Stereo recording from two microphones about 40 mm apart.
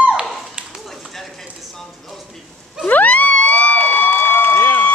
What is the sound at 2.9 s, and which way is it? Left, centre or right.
Crowd, left.